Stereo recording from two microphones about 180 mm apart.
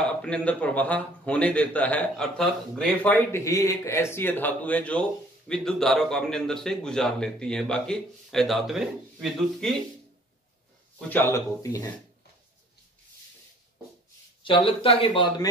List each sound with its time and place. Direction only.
0.0 s a man's voice: 5° left (ahead or behind)
11.0 s a man's voice: 10° left (ahead or behind)
14.4 s speech: 30° left (ahead or behind)